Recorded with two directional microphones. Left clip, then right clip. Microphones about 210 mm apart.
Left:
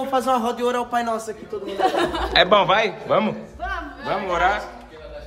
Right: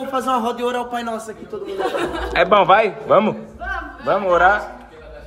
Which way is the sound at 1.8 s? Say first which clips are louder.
Left 2 dB; 10° left (ahead or behind).